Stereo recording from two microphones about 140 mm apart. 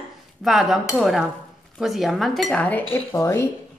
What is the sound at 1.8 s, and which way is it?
A woman's voice, centre (ahead or behind).